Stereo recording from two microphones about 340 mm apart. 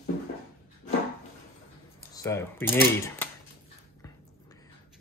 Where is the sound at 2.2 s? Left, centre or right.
Centre.